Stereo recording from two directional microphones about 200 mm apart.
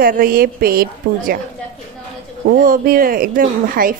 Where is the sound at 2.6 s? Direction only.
45° right (ahead or behind).